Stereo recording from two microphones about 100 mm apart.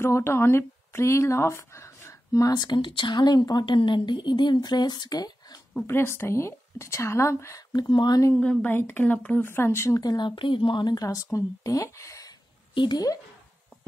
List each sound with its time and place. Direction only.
0.0 s speech: 25° left (ahead or behind); by 5.6 s 40° left (ahead or behind)
5.9 s speech: 25° left (ahead or behind)
7.7 s speech: 45° left (ahead or behind)
8.4 s speech: 15° left (ahead or behind); by 11.1 s 45° left (ahead or behind)
11.3 s speech: 35° left (ahead or behind)
12.7 s speech: 45° left (ahead or behind)